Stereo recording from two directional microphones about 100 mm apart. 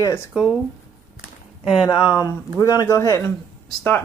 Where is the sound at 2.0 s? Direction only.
40° left (ahead or behind).